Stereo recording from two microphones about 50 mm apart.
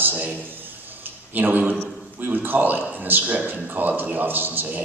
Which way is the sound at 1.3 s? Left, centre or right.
Right.